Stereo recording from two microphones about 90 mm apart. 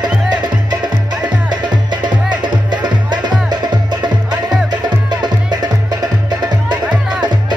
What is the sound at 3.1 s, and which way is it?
Music, 55° right (ahead or behind).